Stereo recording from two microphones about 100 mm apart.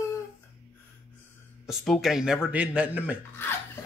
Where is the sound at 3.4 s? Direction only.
20° left (ahead or behind).